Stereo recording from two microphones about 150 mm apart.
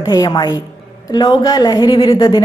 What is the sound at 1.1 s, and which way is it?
A woman's voice, 25° left (ahead or behind).